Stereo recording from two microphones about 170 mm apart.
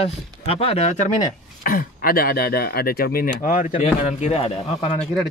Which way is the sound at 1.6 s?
55° left (ahead or behind).